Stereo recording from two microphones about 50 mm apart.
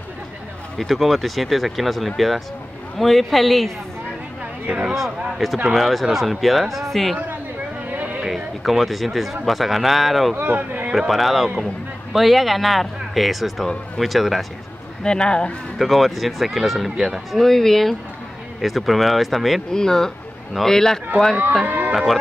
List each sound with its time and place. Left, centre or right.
0.7 s speech: centre
4.8 s speech: centre
7.9 s a sound: right
8.3 s speech: centre
10.3 s speech: right
10.9 s speech: centre
15.0 s speech: centre
15.8 s speech: centre
17.4 s speech: centre
19.7 s a man's voice: centre
21.6 s speech: right